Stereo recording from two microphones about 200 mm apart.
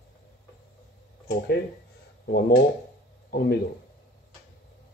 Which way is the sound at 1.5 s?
55° left (ahead or behind).